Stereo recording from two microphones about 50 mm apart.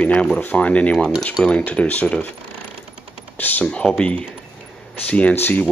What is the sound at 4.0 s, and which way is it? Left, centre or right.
Speech, left.